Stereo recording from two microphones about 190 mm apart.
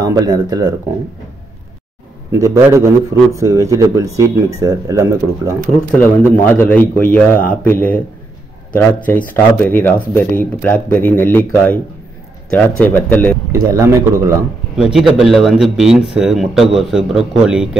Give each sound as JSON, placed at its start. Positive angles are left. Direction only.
{"t": 0.0, "sound": "speech", "side_deg": -20}
{"t": 2.3, "sound": "speech", "side_deg": -15}
{"t": 5.9, "sound": "speech", "side_deg": 10}
{"t": 13.5, "sound": "speech", "side_deg": -15}
{"t": 14.8, "sound": "speech", "side_deg": -5}